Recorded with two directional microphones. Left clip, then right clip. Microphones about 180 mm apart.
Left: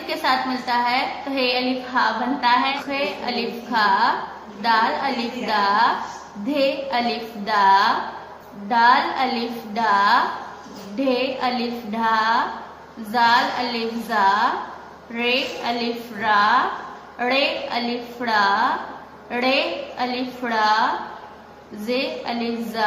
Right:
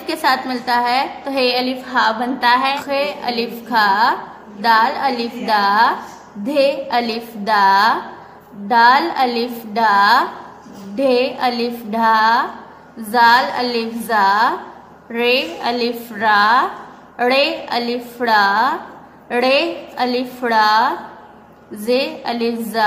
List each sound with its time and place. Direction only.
0.0 s a woman's voice: 40° right (ahead or behind)
21.8 s a woman's voice: 40° right (ahead or behind)